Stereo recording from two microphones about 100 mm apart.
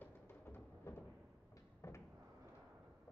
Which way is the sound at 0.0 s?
20° left (ahead or behind).